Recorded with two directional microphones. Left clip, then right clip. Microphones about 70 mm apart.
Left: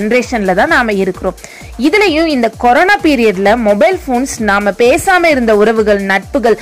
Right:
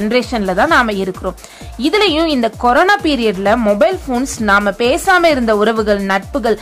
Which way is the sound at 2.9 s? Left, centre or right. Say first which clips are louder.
Left 4 dB; left.